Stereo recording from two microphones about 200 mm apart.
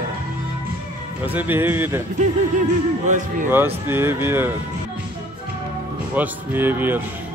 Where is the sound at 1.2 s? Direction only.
10° right (ahead or behind).